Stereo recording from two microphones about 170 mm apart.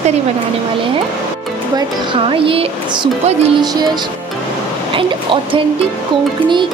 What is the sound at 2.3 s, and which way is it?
Speech, 30° right (ahead or behind).